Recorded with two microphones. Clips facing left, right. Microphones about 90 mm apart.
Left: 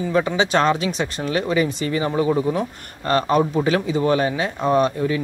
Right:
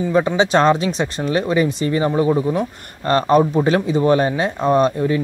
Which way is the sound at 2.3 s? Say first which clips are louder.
Right 2 dB; 5° right (ahead or behind).